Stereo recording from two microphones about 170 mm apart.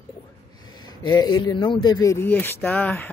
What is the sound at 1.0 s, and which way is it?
Speech, 25° left (ahead or behind).